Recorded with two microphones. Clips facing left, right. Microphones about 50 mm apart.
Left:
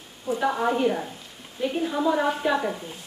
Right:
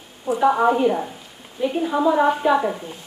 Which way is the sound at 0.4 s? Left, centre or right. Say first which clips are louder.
Right 7 dB; centre.